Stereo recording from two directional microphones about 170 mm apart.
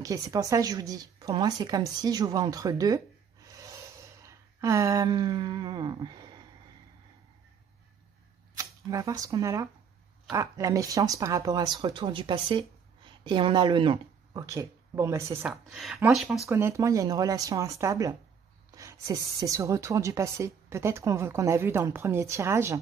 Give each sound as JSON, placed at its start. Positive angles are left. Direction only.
{"t": 0.0, "sound": "a woman's voice", "side_deg": -20}
{"t": 3.4, "sound": "gasp", "side_deg": -20}
{"t": 8.5, "sound": "a woman's voice", "side_deg": -20}
{"t": 15.4, "sound": "a woman's voice", "side_deg": 0}